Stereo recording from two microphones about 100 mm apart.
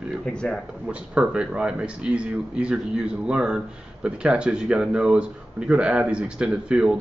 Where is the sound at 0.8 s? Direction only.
10° right (ahead or behind).